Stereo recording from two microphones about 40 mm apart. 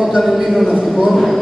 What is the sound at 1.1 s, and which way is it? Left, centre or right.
Speech, centre.